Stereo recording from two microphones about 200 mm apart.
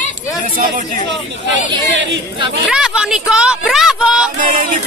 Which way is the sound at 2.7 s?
5° right (ahead or behind).